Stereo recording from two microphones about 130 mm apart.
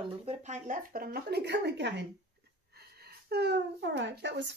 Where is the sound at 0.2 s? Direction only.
55° right (ahead or behind); by 0.8 s 75° right (ahead or behind).